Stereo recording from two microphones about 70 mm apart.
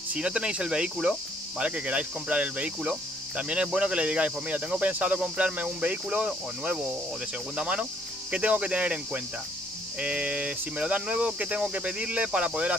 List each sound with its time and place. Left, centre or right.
0.1 s speech: centre